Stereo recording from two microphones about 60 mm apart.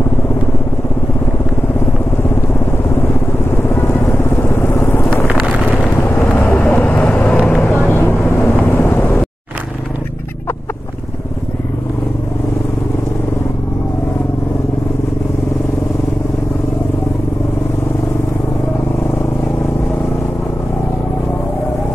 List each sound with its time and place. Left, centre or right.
3.6 s vehicle: left